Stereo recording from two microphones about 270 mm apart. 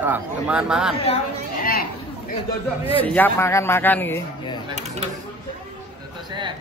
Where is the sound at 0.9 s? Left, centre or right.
Left.